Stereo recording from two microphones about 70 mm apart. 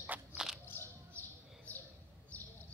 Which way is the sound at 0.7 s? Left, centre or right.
Left.